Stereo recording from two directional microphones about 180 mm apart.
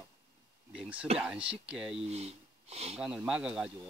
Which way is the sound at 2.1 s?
35° right (ahead or behind).